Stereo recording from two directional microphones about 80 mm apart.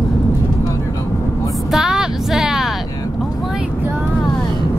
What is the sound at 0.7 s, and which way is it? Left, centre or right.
Vehicle, left.